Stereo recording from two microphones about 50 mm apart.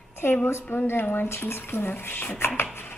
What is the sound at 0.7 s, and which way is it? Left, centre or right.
Speech, left.